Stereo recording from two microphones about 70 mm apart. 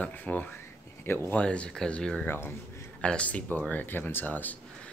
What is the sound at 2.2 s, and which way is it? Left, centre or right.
Speech, left.